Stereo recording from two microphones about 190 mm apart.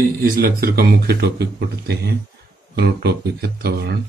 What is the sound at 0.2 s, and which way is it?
A man's voice, 50° right (ahead or behind).